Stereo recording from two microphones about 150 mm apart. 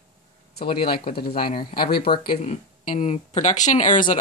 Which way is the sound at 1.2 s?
90° left.